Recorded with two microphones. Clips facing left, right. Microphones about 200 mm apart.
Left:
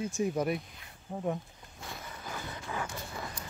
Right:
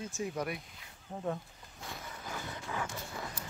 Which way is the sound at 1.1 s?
10° left (ahead or behind).